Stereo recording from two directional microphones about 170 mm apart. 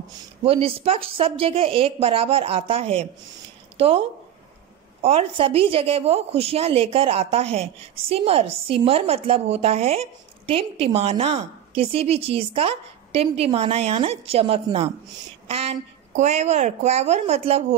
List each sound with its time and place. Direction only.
0.4 s speech: 35° right (ahead or behind)
5.0 s speech: 35° right (ahead or behind)